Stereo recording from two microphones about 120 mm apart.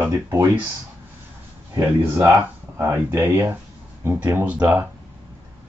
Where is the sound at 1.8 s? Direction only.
15° right (ahead or behind).